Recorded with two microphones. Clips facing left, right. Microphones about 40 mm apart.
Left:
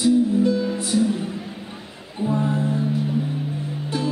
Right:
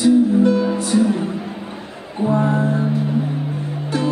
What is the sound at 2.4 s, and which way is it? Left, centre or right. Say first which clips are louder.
Music: right 4 dB; right.